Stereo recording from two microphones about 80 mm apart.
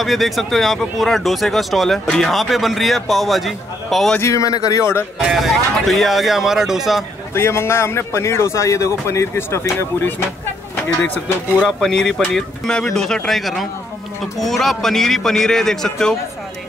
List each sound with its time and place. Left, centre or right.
0.0 s a man's voice: centre
4.2 s a man's voice: left
5.3 s a man's voice: centre
7.3 s a man's voice: left
11.8 s a man's voice: centre